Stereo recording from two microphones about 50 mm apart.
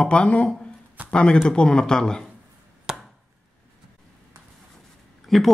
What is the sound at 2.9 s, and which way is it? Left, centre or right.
Chop, centre.